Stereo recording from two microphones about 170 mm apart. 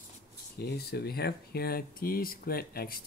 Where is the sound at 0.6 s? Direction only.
70° left (ahead or behind).